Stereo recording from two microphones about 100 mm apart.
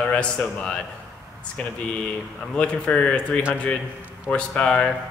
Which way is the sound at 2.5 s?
10° left (ahead or behind).